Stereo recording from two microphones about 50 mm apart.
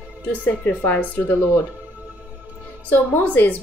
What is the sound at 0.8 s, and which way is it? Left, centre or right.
Speech, left.